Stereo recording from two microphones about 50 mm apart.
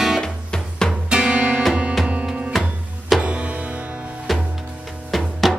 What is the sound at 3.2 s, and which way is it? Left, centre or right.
Music, right.